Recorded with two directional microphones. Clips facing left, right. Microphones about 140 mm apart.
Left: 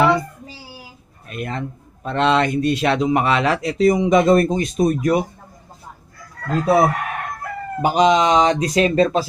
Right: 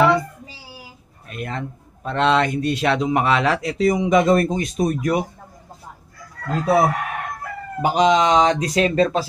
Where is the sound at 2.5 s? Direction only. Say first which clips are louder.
Left 3 dB; 65° left (ahead or behind).